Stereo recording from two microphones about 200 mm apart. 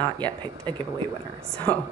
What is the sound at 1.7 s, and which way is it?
Speech, 10° left (ahead or behind).